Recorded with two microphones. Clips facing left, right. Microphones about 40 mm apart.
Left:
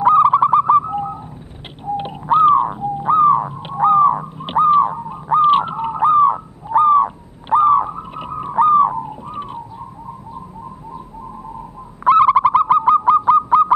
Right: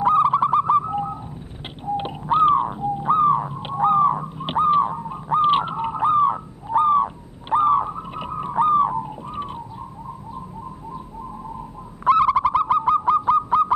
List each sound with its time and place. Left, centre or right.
0.0 s bird: left; by 1.2 s centre
2.0 s crow: centre
3.1 s a sound: centre
3.7 s crow: centre
4.4 s a sound: centre
12.1 s bird: left